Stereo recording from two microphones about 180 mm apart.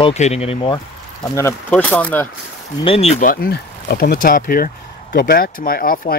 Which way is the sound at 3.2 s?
60° left (ahead or behind).